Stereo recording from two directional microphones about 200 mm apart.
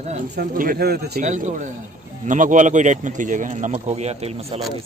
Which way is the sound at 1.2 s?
40° right (ahead or behind).